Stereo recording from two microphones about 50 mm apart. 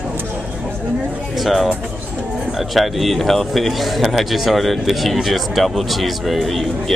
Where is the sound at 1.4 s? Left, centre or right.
Centre.